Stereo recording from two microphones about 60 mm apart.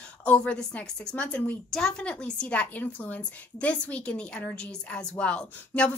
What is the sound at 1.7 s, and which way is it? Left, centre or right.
A woman's voice, centre.